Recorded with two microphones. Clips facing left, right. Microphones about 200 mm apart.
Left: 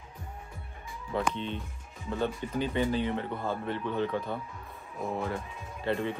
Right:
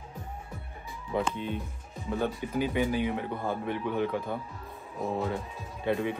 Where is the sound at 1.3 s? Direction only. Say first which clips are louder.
Right 2 dB; 10° right (ahead or behind).